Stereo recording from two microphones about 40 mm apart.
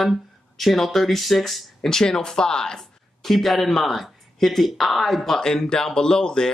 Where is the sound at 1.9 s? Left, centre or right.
Centre.